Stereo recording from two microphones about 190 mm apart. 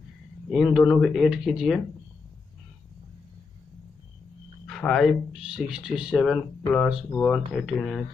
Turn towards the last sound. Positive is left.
turn(degrees=0)  # may be behind; listen again after turning